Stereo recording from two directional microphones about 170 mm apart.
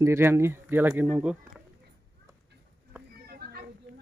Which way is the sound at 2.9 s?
15° right (ahead or behind).